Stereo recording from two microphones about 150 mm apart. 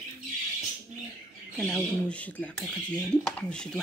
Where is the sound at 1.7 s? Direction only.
10° left (ahead or behind).